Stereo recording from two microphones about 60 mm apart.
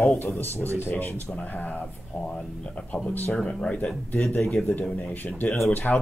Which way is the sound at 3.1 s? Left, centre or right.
Left.